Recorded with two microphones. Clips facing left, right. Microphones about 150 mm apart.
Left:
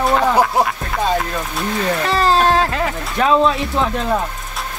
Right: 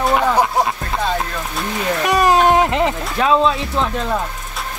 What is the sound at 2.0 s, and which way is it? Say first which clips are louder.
Speech: right 3 dB; 15° right (ahead or behind).